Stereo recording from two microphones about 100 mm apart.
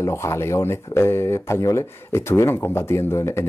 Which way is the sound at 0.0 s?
30° left (ahead or behind).